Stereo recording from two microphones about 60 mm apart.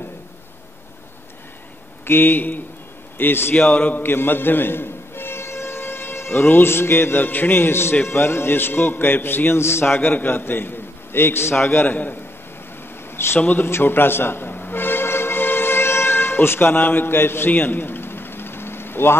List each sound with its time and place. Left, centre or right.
2.0 s a man's voice: left
3.5 s a man's voice: left
13.1 s a sound: left
13.4 s a man's voice: left
13.7 s music: left